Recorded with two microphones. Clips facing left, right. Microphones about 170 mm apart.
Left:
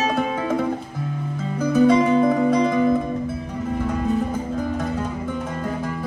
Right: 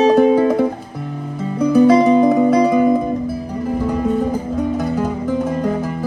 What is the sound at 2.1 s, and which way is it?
Music, 25° right (ahead or behind).